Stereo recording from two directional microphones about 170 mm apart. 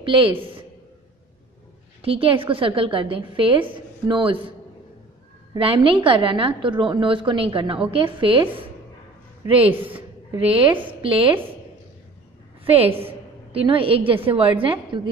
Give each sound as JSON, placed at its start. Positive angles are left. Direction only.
{"t": 0.0, "sound": "a woman's voice", "side_deg": -30}
{"t": 2.0, "sound": "a woman's voice", "side_deg": -35}
{"t": 5.6, "sound": "a woman's voice", "side_deg": -30}
{"t": 9.5, "sound": "a woman's voice", "side_deg": -35}
{"t": 13.0, "sound": "a woman's voice", "side_deg": -35}